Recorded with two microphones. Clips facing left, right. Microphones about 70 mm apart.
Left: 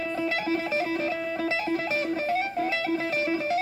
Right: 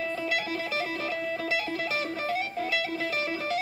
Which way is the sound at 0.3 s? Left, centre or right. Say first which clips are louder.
Left 3 dB; left.